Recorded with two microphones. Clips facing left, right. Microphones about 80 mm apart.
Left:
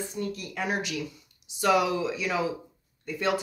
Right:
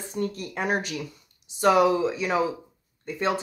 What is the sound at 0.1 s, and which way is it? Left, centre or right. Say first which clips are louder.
Speech: right 4 dB; right.